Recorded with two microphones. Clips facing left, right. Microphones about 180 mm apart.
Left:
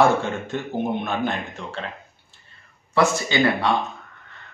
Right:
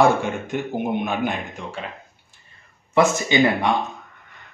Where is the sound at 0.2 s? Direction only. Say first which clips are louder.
Right 2 dB; 15° right (ahead or behind).